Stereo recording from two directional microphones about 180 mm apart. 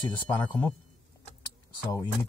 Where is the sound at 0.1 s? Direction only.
20° left (ahead or behind).